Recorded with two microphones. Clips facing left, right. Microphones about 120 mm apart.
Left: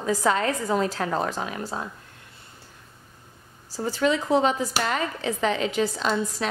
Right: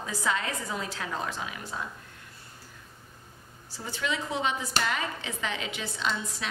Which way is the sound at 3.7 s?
40° left (ahead or behind).